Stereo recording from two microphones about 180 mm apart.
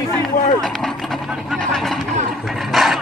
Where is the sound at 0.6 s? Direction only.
Centre (ahead or behind).